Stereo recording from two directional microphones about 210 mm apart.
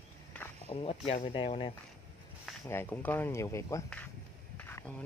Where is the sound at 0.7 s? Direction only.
30° left (ahead or behind).